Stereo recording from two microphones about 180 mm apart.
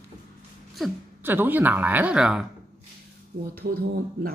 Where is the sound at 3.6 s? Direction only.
50° right (ahead or behind).